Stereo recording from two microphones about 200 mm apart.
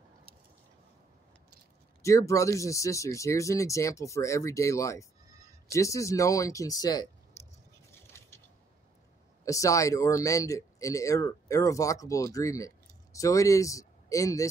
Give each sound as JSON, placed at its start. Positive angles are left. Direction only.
{"t": 2.0, "sound": "speech", "side_deg": 15}
{"t": 9.4, "sound": "speech", "side_deg": 15}